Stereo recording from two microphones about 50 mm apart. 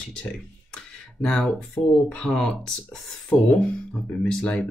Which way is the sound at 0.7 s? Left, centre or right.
Centre.